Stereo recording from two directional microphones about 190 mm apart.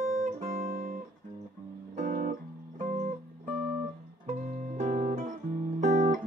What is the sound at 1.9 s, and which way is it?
Music, 40° right (ahead or behind).